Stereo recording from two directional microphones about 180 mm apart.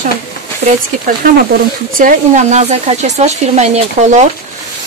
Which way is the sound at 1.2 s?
55° right (ahead or behind).